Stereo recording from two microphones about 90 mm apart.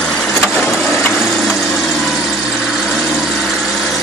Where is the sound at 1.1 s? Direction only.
Centre (ahead or behind).